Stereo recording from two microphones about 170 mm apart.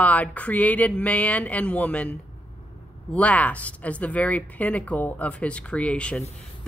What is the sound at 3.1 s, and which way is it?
A woman's voice, 10° left (ahead or behind).